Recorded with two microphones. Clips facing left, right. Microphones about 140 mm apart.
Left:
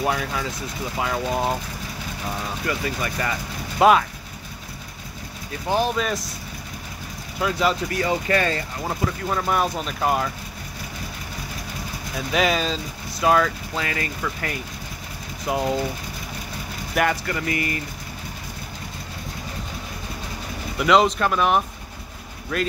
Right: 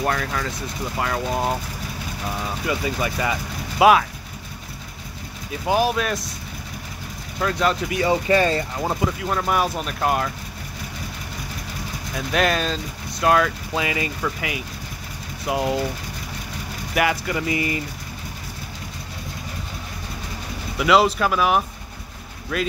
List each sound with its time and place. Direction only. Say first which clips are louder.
0.0 s speech: even; 5° left (ahead or behind)
2.6 s speech: right 3 dB; 20° right (ahead or behind)
5.7 s speech: right 2 dB; 10° right (ahead or behind)
7.3 s speech: even; 5° left (ahead or behind)
7.9 s speech: right 3 dB; 20° right (ahead or behind)
9.2 s speech: left 1 dB; centre (ahead or behind)
12.2 s speech: even; centre (ahead or behind)
13.7 s speech: right 4 dB; 15° right (ahead or behind)
16.9 s speech: right 1 dB; 5° right (ahead or behind)
17.5 s speech: right 2 dB; 20° right (ahead or behind)
20.7 s speech: even; 5° right (ahead or behind)